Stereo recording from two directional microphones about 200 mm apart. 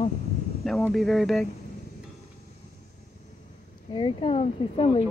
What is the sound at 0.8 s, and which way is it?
Speech, centre (ahead or behind).